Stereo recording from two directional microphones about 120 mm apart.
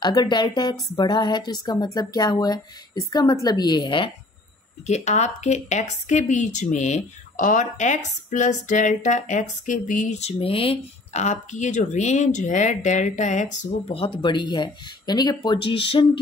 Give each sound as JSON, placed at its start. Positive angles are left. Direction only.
{"t": 0.0, "sound": "speech", "side_deg": 35}
{"t": 4.8, "sound": "a woman's voice", "side_deg": 70}
{"t": 11.1, "sound": "a woman's voice", "side_deg": 75}
{"t": 13.8, "sound": "speech", "side_deg": 50}